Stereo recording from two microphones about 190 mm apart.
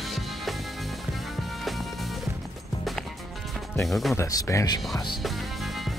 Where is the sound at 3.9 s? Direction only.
Centre (ahead or behind).